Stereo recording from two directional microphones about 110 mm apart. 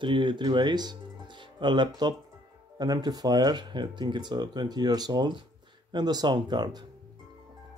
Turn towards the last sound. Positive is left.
turn(degrees=-40)  # may be behind; listen again after turning